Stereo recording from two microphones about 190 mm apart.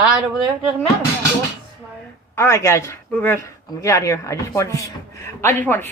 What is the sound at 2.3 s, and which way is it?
A woman's voice, 15° left (ahead or behind).